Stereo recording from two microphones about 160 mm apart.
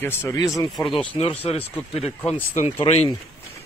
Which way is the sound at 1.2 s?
35° left (ahead or behind).